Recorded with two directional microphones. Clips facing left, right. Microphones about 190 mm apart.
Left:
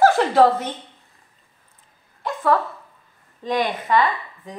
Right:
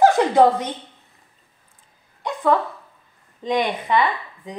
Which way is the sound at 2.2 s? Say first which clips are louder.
Right 1 dB; 15° right (ahead or behind).